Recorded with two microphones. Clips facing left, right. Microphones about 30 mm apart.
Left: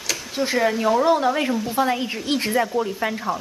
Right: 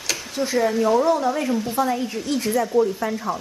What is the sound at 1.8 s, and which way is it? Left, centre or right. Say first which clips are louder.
Stir: left 1 dB; left.